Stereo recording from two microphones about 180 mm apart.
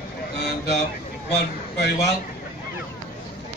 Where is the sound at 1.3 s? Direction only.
65° left (ahead or behind).